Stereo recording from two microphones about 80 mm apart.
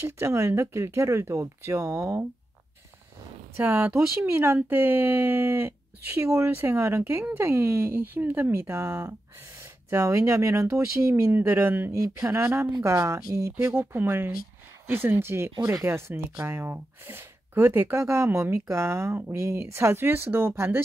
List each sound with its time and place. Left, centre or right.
0.0 s speech: right
3.5 s speech: right
11.9 s speech: right
12.3 s speech: right